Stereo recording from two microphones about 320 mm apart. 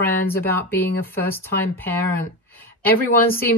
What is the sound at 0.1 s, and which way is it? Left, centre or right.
Speech, left.